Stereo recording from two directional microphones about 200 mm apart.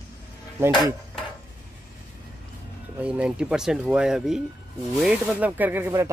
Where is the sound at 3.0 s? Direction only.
5° right (ahead or behind).